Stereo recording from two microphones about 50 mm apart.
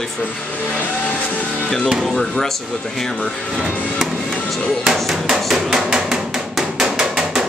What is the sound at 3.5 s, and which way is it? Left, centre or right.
Speech, centre.